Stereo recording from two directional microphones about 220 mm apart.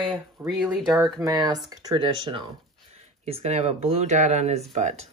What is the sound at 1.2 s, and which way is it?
Speech, 15° right (ahead or behind).